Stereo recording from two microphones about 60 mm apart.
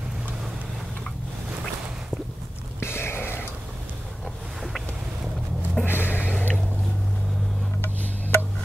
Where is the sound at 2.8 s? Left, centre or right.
Left.